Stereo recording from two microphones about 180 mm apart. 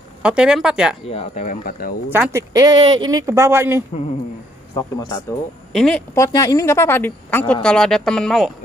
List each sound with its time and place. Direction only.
0.2 s speech: 5° right (ahead or behind)
1.0 s speech: 35° left (ahead or behind); by 2.0 s 50° left (ahead or behind)
2.0 s speech: 10° right (ahead or behind)
4.7 s speech: 20° left (ahead or behind)
5.7 s speech: 5° left (ahead or behind)
6.1 s a woman's voice: 20° left (ahead or behind); by 8.5 s centre (ahead or behind)